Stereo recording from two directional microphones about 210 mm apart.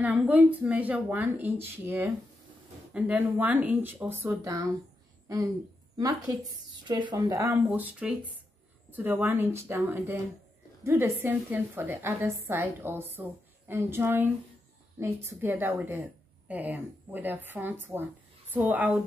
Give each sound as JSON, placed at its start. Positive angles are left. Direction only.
{"t": 0.0, "sound": "a woman's voice", "side_deg": -5}
{"t": 5.9, "sound": "a woman's voice", "side_deg": -15}